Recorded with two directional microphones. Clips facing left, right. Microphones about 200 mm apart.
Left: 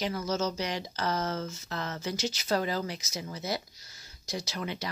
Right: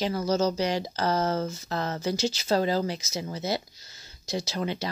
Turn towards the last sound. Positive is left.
turn(degrees=-30)  # may be behind; listen again after turning